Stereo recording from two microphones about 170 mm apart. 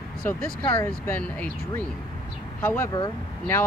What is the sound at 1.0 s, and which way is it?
Speech, 10° left (ahead or behind).